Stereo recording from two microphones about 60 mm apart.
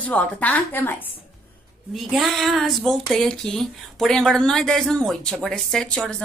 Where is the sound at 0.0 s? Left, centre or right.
Left.